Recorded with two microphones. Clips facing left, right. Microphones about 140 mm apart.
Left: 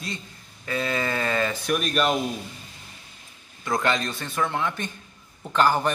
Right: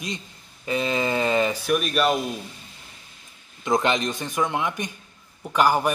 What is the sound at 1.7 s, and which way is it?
Speech, 5° right (ahead or behind).